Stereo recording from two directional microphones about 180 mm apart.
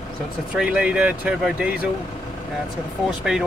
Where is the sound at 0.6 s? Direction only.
10° right (ahead or behind).